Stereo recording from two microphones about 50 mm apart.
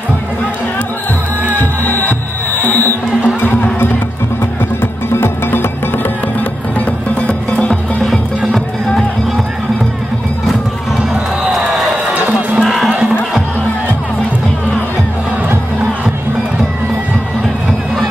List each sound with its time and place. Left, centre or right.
1.6 s music: left
5.1 s music: left
7.2 s music: left
12.1 s music: right
12.5 s music: centre